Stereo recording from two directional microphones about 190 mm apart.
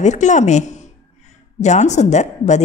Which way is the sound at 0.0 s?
40° left (ahead or behind).